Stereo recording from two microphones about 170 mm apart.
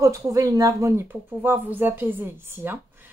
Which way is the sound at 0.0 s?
20° right (ahead or behind).